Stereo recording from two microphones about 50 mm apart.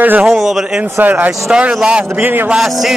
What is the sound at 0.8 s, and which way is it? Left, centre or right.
Speech, right.